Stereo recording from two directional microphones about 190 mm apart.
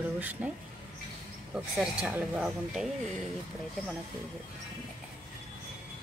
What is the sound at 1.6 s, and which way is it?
Speech, 5° right (ahead or behind).